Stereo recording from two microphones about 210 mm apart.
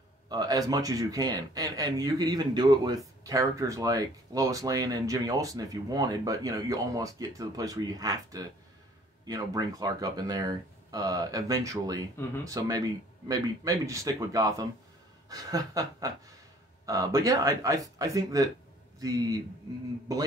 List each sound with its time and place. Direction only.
0.3 s speech: 20° right (ahead or behind)